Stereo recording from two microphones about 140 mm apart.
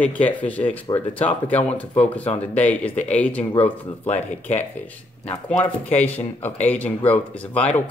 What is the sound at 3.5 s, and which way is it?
Speech, 50° left (ahead or behind).